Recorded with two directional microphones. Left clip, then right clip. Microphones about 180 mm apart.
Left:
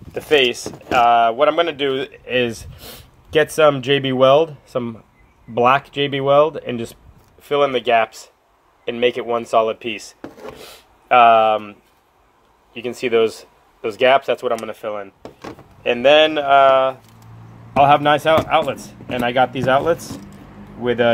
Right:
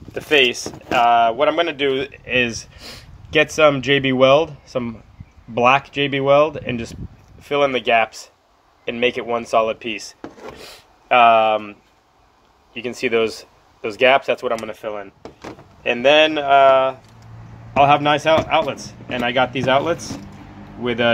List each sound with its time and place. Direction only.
0.1 s speech: 15° left (ahead or behind)
8.8 s wood: 10° left (ahead or behind)
12.7 s speech: 5° left (ahead or behind)
14.7 s speech: 15° left (ahead or behind)